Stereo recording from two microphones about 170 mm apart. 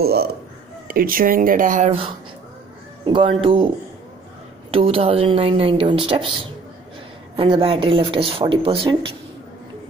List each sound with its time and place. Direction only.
0.0 s speech: 65° right (ahead or behind); by 3.6 s 30° right (ahead or behind)
4.6 s speech: 35° right (ahead or behind)
7.3 s speech: 30° right (ahead or behind)